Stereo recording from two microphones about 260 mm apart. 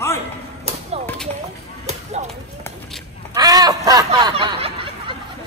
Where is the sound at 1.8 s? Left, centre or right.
Right.